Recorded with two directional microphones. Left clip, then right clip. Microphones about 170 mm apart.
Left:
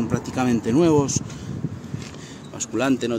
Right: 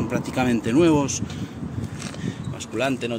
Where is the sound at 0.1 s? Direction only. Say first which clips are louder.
Right 2 dB; 20° left (ahead or behind).